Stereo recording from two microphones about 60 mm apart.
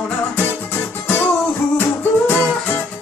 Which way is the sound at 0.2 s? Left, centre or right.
Left.